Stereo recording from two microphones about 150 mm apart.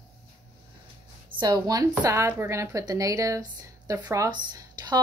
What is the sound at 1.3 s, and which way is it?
Speech, 25° right (ahead or behind).